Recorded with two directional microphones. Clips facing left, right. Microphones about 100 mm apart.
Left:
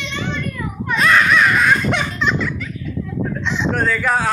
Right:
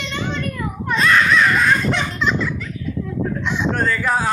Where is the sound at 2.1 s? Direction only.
Centre (ahead or behind).